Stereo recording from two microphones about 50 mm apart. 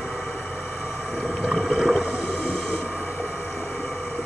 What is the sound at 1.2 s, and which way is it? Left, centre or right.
Boat, centre.